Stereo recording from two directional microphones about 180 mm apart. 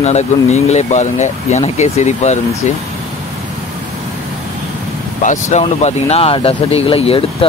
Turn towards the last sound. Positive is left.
turn(degrees=30)  # may be behind; listen again after turning